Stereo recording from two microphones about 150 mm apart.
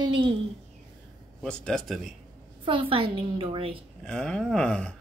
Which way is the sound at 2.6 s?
35° right (ahead or behind).